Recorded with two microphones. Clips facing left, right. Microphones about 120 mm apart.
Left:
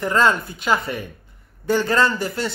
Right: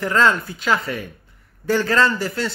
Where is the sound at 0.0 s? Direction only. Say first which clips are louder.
Even; 25° left (ahead or behind).